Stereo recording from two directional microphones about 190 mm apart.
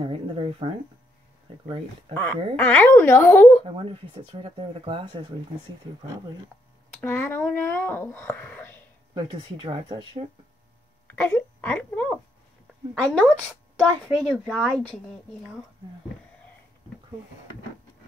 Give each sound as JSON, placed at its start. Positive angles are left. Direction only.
{"t": 0.0, "sound": "speech", "side_deg": -30}
{"t": 2.1, "sound": "speech", "side_deg": 10}
{"t": 3.6, "sound": "speech", "side_deg": -30}
{"t": 6.9, "sound": "speech", "side_deg": 10}
{"t": 9.1, "sound": "speech", "side_deg": -25}
{"t": 11.1, "sound": "speech", "side_deg": 10}